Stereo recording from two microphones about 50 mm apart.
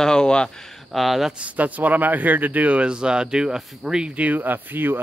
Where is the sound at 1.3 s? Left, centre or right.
Right; by 4.1 s centre.